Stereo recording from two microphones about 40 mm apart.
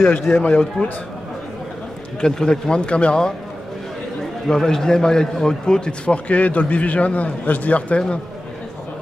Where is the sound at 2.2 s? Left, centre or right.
Centre.